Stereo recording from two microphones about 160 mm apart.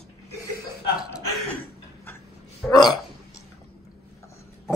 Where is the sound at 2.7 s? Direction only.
25° left (ahead or behind).